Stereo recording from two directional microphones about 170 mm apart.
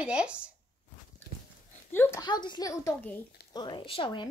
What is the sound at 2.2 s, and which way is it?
A woman's voice, 25° left (ahead or behind).